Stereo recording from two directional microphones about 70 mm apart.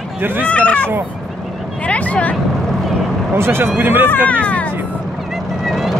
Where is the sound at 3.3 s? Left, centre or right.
Right.